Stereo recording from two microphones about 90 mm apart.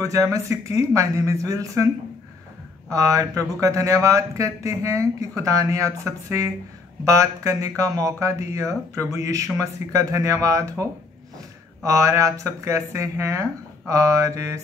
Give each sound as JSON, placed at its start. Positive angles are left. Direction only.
{"t": 0.1, "sound": "speech", "side_deg": -40}
{"t": 2.9, "sound": "speech", "side_deg": -35}